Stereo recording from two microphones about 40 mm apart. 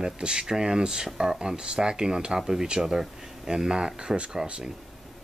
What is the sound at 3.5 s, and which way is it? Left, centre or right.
Speech, centre.